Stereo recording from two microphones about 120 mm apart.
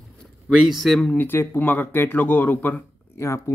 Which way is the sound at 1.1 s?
20° left (ahead or behind).